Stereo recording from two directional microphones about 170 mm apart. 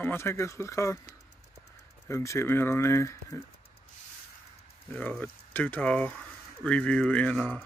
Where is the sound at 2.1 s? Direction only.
15° left (ahead or behind).